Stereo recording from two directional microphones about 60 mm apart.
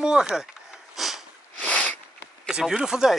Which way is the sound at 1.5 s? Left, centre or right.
Left.